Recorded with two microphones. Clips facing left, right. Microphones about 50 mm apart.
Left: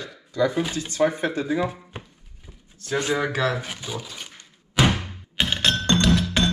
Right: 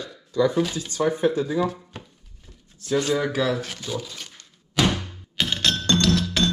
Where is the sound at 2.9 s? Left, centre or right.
Left.